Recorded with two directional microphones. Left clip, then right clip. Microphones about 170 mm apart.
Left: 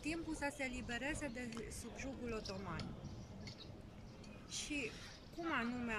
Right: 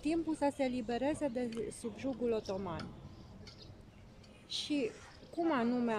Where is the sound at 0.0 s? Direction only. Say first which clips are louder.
Right 9 dB; 25° right (ahead or behind).